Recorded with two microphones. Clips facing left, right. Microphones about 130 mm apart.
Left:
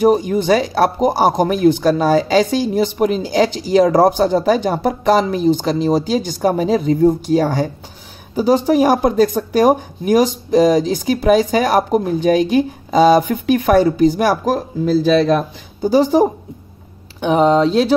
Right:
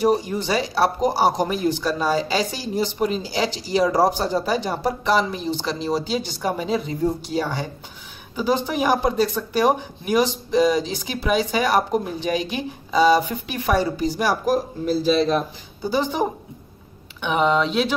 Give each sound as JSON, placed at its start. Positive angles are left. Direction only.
{"t": 0.0, "sound": "a man's voice", "side_deg": 55}
{"t": 15.9, "sound": "speech", "side_deg": 40}